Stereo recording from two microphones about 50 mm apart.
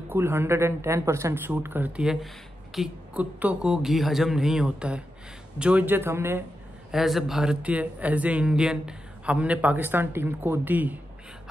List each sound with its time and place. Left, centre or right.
0.1 s speech: right
1.6 s speech: right
2.8 s speech: centre
3.2 s speech: right
3.6 s speech: centre
5.9 s speech: right
6.9 s speech: centre
7.6 s speech: right
8.5 s speech: centre; by 11.0 s right